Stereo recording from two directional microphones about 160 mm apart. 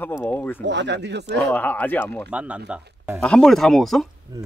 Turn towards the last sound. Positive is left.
turn(degrees=-25)  # may be behind; listen again after turning